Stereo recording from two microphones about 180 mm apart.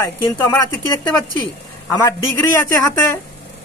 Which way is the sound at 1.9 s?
15° left (ahead or behind).